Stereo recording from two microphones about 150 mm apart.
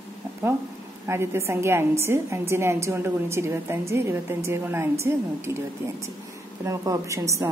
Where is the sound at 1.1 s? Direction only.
15° right (ahead or behind).